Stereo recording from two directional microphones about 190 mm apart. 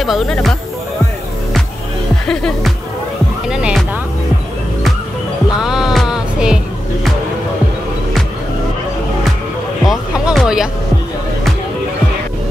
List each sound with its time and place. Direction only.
0.0 s speech: centre (ahead or behind)
2.2 s speech: 5° left (ahead or behind)
3.4 s music: 5° right (ahead or behind)
5.6 s music: 5° right (ahead or behind)
9.8 s music: centre (ahead or behind)